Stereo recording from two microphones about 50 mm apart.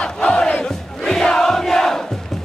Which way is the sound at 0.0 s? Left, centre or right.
Centre.